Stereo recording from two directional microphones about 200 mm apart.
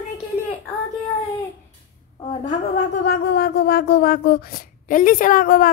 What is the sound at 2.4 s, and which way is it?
Speech, 40° left (ahead or behind).